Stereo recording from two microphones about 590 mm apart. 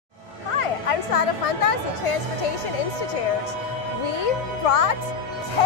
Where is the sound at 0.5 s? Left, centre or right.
Left.